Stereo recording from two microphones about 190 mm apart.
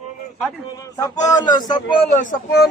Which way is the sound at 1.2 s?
20° left (ahead or behind).